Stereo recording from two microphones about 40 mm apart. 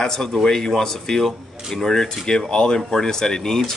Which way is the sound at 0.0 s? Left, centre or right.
Centre.